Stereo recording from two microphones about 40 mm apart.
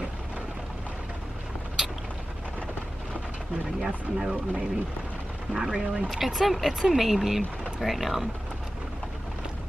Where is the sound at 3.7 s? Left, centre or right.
Centre.